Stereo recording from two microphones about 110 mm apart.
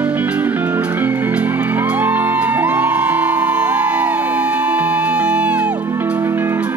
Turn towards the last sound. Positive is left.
turn(degrees=-20)  # may be behind; listen again after turning